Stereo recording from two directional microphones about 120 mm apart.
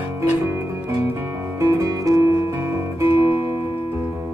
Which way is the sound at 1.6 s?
25° right (ahead or behind).